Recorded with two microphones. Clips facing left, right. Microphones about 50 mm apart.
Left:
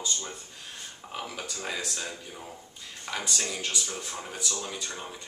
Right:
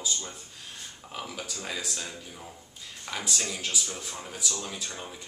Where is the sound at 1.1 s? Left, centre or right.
Centre.